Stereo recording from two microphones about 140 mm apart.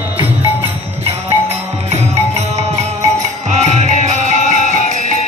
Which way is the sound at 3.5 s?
55° right (ahead or behind).